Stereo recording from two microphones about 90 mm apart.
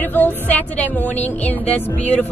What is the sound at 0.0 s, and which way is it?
Speech, 20° left (ahead or behind).